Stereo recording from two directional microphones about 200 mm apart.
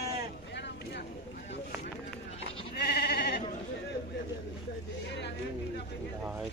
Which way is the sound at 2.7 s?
55° left (ahead or behind).